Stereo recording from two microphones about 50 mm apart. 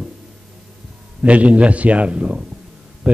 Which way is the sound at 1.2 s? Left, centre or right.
Right.